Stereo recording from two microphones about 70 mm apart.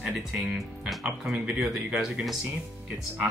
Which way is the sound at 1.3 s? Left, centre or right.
Centre.